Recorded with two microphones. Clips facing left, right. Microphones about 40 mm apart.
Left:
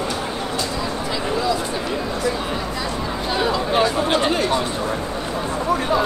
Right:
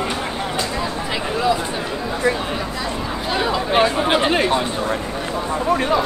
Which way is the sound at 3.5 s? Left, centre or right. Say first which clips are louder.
Right 2 dB; right.